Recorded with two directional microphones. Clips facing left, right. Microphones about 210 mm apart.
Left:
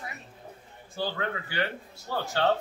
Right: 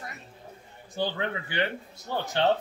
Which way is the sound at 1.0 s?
20° right (ahead or behind).